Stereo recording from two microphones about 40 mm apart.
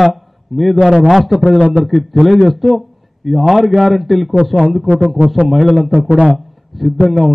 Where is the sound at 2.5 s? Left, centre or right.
Centre.